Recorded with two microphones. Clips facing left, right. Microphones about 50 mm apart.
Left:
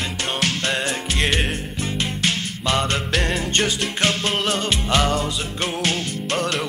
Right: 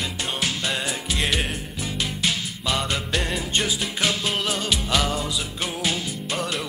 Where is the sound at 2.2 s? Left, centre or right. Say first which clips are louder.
Left 3 dB; left.